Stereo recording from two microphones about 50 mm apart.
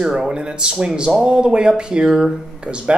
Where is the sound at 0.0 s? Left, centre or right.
Centre.